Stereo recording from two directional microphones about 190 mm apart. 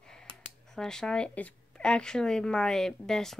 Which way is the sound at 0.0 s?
5° left (ahead or behind).